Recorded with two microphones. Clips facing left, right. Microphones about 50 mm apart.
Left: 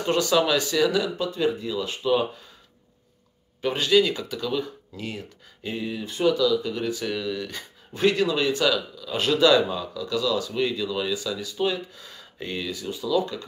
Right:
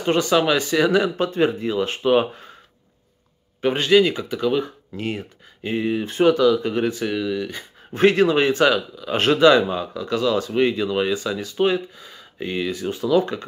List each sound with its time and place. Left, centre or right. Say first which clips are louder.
0.0 s speech: right 3 dB; right
3.6 s speech: right 4 dB; right
7.1 s speech: right 5 dB; centre
7.9 s speech: right 6 dB; right
11.9 s speech: right 2 dB; centre
12.6 s speech: right 7 dB; right